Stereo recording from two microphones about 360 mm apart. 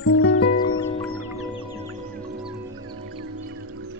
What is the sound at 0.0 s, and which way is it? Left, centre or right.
Music, left.